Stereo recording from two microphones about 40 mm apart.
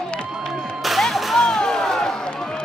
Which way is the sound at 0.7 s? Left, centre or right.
Centre.